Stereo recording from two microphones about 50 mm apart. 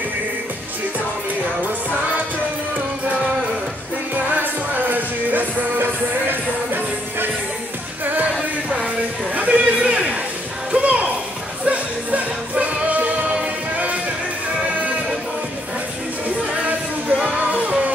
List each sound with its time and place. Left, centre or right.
4.9 s music: right
8.6 s a sound: right
10.7 s music: right
17.2 s music: right